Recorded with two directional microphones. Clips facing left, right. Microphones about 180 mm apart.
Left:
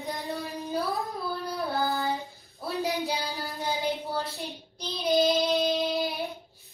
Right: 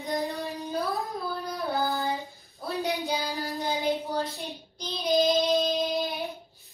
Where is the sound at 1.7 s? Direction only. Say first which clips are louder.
Even; centre (ahead or behind).